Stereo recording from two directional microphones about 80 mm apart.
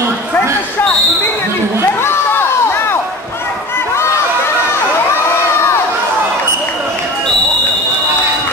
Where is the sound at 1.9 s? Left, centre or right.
Left.